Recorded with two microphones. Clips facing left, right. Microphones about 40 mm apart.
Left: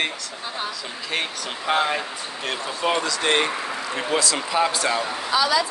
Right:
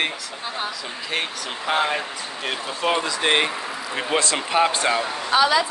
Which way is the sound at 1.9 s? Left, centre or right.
Centre.